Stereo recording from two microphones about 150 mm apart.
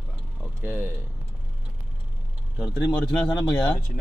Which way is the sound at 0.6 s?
15° right (ahead or behind).